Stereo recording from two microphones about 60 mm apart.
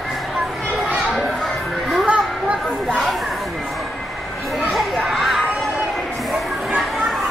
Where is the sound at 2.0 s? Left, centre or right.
Right.